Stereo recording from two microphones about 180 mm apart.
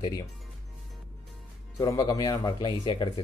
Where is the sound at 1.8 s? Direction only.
20° left (ahead or behind).